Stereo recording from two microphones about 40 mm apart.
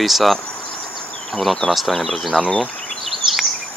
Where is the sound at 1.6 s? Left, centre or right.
Left.